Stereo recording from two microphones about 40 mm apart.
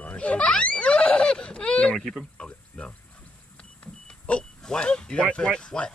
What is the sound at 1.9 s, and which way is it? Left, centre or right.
Speech, centre.